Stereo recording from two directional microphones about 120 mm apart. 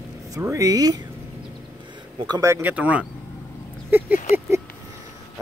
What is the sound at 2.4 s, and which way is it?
Speech, 25° right (ahead or behind).